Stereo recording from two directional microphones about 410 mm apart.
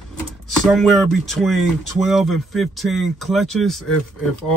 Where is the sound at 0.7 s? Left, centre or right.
Centre.